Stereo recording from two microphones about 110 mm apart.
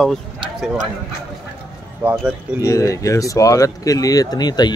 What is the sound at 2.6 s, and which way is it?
Speech, 30° left (ahead or behind).